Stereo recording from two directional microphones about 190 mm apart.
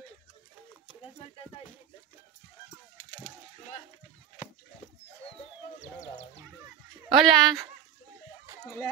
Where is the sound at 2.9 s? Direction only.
40° left (ahead or behind).